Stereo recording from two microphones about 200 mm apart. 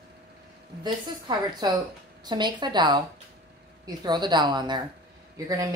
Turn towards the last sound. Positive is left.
turn(degrees=-15)  # may be behind; listen again after turning